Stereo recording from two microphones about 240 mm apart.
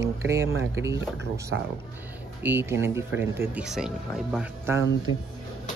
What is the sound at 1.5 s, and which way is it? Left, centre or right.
Speech, right.